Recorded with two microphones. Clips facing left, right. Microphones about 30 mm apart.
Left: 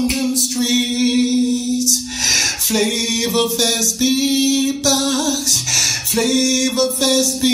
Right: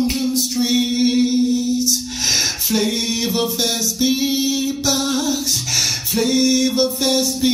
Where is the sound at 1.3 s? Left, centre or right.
Centre.